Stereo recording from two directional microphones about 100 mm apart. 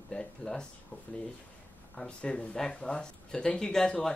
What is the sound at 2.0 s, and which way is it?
Speech, 10° left (ahead or behind).